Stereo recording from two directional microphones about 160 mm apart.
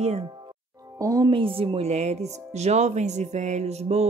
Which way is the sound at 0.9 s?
20° right (ahead or behind).